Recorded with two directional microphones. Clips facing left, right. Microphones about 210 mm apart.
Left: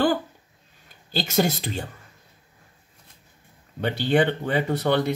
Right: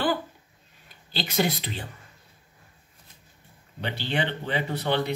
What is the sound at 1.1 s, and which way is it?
Speech, 45° left (ahead or behind).